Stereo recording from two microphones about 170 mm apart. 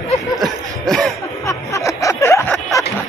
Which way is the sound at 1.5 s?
20° left (ahead or behind).